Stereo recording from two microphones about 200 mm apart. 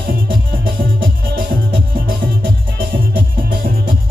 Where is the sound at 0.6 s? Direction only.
45° right (ahead or behind).